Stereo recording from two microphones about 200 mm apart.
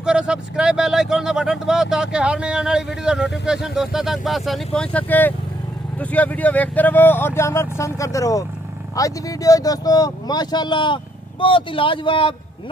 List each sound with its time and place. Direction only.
0.0 s speech: 5° right (ahead or behind); by 12.4 s 25° left (ahead or behind)